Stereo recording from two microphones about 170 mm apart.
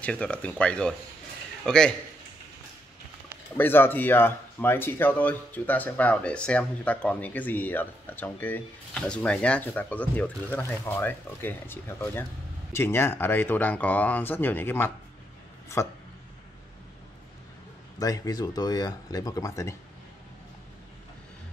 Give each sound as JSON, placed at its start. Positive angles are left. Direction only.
{"t": 0.0, "sound": "a man's voice", "side_deg": 5}
{"t": 3.5, "sound": "speech", "side_deg": 10}
{"t": 17.9, "sound": "speech", "side_deg": 20}